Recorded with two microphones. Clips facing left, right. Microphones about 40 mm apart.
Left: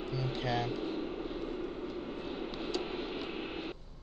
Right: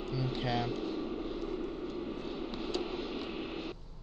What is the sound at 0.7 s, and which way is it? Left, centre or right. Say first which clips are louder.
Vehicle: even; left.